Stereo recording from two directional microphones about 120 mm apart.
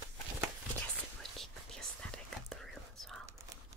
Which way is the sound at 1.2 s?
5° left (ahead or behind).